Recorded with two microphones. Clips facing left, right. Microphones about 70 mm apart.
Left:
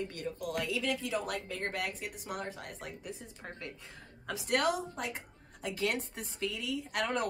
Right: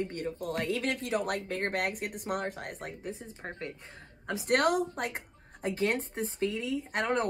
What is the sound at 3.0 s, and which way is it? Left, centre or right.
Speech, right.